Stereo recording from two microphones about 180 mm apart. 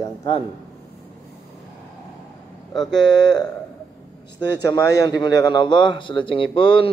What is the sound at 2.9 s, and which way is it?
Speech, 25° left (ahead or behind).